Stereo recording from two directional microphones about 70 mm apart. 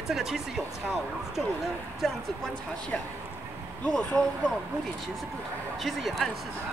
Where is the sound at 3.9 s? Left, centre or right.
Centre.